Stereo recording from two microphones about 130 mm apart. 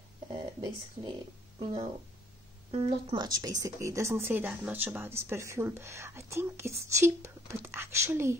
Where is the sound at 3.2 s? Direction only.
30° right (ahead or behind).